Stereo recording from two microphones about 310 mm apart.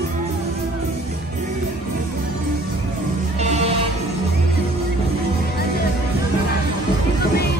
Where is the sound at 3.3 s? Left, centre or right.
Right.